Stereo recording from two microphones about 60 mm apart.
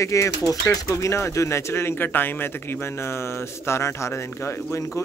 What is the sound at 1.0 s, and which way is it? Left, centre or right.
A man's voice, left.